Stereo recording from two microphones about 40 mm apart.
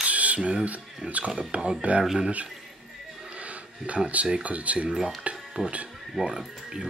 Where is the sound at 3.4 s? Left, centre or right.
Right.